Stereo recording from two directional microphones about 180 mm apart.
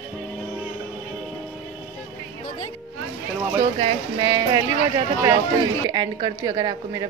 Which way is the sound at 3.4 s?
15° right (ahead or behind).